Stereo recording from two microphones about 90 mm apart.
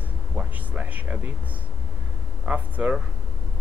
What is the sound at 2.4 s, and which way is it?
Speech, 20° right (ahead or behind).